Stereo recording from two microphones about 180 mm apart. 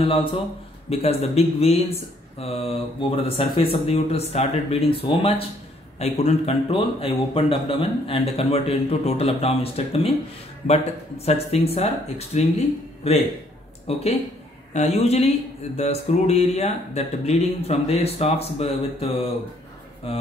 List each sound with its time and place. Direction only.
0.0 s speech: 30° left (ahead or behind)